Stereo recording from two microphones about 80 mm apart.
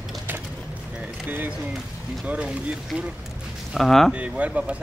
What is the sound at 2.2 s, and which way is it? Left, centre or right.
Boat, centre.